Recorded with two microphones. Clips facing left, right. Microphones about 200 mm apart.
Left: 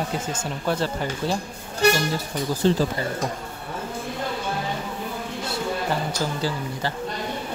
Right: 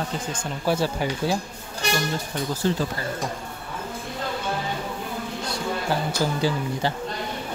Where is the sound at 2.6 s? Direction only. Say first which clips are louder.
Left 4 dB; 30° left (ahead or behind).